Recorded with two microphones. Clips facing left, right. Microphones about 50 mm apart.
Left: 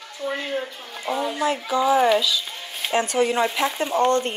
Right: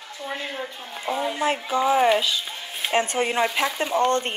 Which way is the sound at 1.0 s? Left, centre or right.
Right.